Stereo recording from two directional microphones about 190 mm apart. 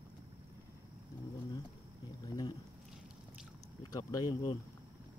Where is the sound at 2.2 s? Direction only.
20° left (ahead or behind).